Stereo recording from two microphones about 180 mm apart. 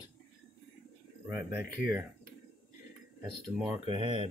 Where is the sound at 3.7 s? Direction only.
30° right (ahead or behind).